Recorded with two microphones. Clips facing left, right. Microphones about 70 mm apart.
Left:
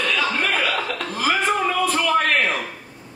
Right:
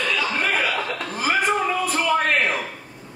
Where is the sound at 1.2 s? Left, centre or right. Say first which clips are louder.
Even; centre.